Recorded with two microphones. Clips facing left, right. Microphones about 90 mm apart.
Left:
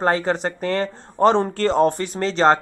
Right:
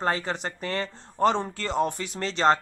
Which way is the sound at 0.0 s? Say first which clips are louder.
Left 7 dB; 45° left (ahead or behind).